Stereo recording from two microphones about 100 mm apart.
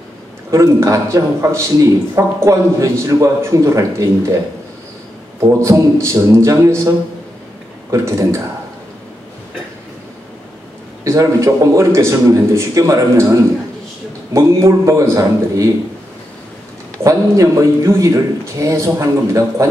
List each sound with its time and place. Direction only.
0.5 s a man's voice: 30° right (ahead or behind)
5.4 s a man's voice: 30° right (ahead or behind)
7.9 s a man's voice: 30° right (ahead or behind)
11.1 s a man's voice: 30° right (ahead or behind)
17.0 s a man's voice: 35° right (ahead or behind)